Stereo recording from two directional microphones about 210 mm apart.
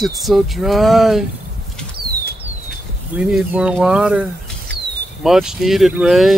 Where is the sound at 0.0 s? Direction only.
Centre (ahead or behind).